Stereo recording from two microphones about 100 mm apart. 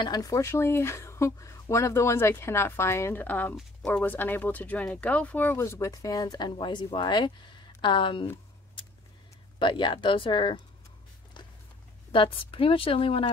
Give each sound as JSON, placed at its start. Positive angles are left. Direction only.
{"t": 0.0, "sound": "speech", "side_deg": 40}
{"t": 5.6, "sound": "speech", "side_deg": 30}
{"t": 9.6, "sound": "speech", "side_deg": 50}
{"t": 11.4, "sound": "a sound", "side_deg": 50}
{"t": 12.1, "sound": "speech", "side_deg": 65}